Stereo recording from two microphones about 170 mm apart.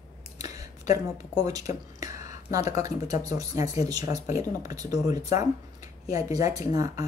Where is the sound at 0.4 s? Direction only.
20° right (ahead or behind).